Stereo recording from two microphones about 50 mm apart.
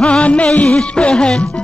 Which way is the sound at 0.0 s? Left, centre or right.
Left.